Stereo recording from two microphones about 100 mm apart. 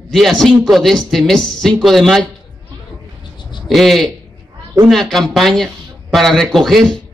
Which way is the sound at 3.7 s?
Centre (ahead or behind).